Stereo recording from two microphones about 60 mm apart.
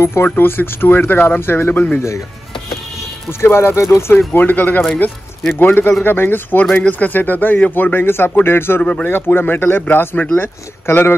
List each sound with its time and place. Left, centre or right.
0.0 s speech: left
2.0 s speech: left
3.3 s speech: left
4.3 s speech: left
6.6 s a man's voice: left